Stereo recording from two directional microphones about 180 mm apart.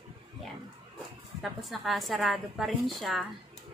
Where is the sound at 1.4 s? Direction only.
Centre (ahead or behind).